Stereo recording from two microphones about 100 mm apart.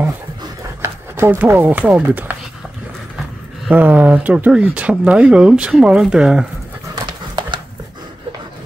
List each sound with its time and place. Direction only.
0.8 s a sound: 30° right (ahead or behind)
1.4 s speech: 20° right (ahead or behind)
3.7 s speech: 15° right (ahead or behind)
7.4 s dog: 45° right (ahead or behind)